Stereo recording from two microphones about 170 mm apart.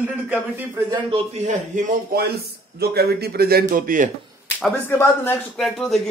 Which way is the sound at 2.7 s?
65° right (ahead or behind).